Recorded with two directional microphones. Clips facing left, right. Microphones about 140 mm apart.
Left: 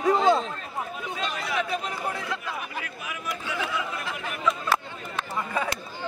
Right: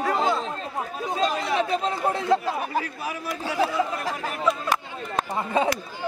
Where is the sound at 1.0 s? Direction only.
35° right (ahead or behind).